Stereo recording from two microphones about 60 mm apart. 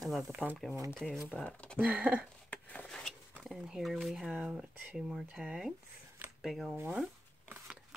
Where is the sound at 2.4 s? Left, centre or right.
Left.